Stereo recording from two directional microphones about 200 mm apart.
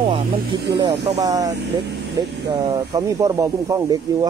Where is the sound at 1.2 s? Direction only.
15° right (ahead or behind).